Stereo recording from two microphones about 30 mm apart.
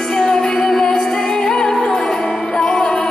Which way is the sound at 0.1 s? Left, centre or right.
Left.